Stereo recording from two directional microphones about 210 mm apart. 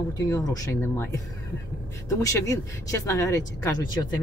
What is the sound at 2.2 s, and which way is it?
Speech, 15° left (ahead or behind).